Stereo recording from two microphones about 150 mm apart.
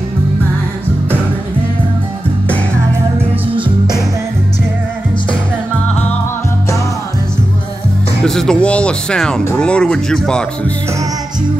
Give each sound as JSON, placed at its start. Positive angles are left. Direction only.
{"t": 3.5, "sound": "music", "side_deg": -30}
{"t": 8.2, "sound": "speech", "side_deg": 5}